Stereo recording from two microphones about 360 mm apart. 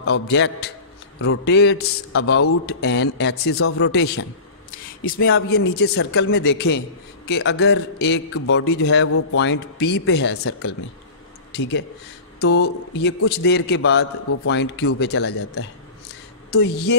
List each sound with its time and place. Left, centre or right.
0.0 s a man's voice: left
12.4 s a man's voice: left